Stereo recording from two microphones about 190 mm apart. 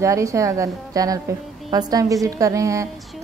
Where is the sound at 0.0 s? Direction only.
15° right (ahead or behind).